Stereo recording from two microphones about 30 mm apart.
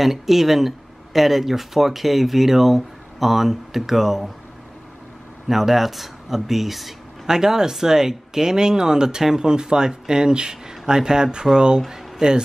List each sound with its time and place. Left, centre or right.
0.0 s speech: centre
5.5 s speech: centre
7.2 s speech: centre